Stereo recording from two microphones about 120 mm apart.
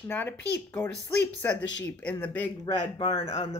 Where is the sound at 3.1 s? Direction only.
60° left (ahead or behind).